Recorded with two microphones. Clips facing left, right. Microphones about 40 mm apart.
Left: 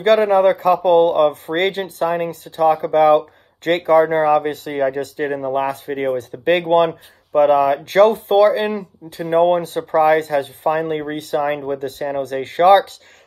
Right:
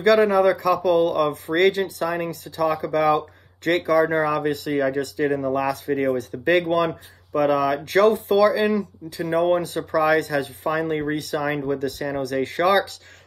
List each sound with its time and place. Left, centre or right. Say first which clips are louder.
0.0 s speech: left 3 dB; left
5.3 s speech: left 2 dB; left